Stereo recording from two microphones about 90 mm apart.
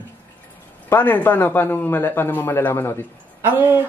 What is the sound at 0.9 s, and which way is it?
A man's voice, 20° left (ahead or behind).